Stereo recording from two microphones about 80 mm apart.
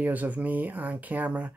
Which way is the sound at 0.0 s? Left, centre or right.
Centre.